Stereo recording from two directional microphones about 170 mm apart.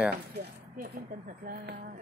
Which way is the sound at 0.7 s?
60° right (ahead or behind).